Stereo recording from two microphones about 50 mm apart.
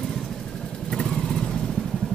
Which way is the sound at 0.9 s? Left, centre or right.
Centre.